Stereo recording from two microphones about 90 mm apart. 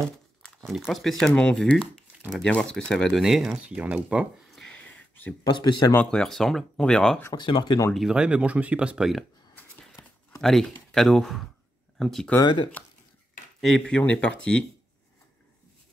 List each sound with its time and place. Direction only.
0.7 s speech: centre (ahead or behind)
1.3 s speech: 10° left (ahead or behind)
1.6 s speech: centre (ahead or behind)
3.6 s speech: 15° right (ahead or behind)
4.5 s a sound: centre (ahead or behind)
4.7 s a sound: 15° left (ahead or behind)
5.4 s speech: 50° left (ahead or behind)
6.0 s speech: 5° left (ahead or behind)
7.3 s speech: 60° left (ahead or behind)
8.1 s speech: 10° right (ahead or behind)
10.4 s speech: 5° left (ahead or behind)
13.6 s speech: centre (ahead or behind)